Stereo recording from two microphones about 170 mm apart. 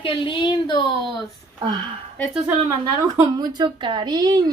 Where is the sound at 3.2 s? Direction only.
25° right (ahead or behind).